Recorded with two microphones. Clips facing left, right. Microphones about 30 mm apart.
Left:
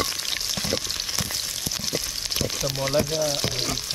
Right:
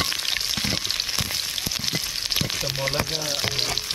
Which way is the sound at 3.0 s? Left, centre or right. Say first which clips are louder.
Left 2 dB; right.